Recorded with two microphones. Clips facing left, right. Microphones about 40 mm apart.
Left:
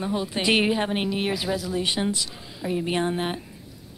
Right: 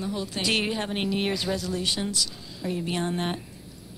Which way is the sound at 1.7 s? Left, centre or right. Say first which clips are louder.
Left 3 dB; left.